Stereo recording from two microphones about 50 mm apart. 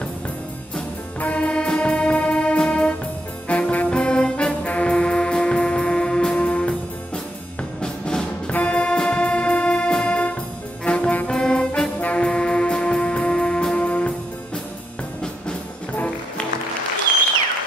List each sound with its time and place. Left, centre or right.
1.3 s brass instrument: left
3.4 s trombone: left
7.8 s music: centre
10.8 s brass instrument: left
11.3 s music: centre
12.0 s brass instrument: left
12.3 s music: centre